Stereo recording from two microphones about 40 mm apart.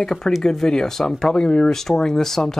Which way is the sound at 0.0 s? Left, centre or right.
Centre.